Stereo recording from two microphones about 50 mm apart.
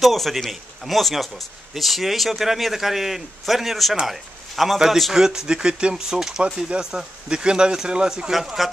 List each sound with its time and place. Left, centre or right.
0.0 s a man's voice: centre